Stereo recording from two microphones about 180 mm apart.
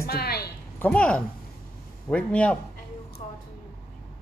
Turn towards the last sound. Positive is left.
turn(degrees=35)  # may be behind; listen again after turning